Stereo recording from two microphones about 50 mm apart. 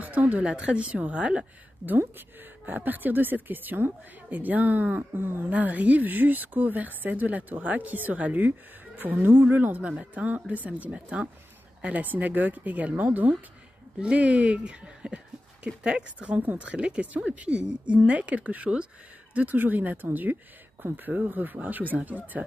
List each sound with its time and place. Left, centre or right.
0.0 s a sound: right
0.5 s a woman's voice: right
1.9 s speech: right
5.5 s speech: right
9.8 s a woman's voice: right
13.9 s a woman's voice: right
16.3 s a woman's voice: right